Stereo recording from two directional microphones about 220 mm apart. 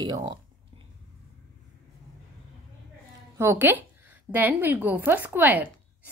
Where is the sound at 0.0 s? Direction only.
20° right (ahead or behind).